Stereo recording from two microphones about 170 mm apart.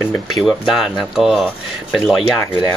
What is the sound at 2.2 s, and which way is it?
Speech, 25° left (ahead or behind).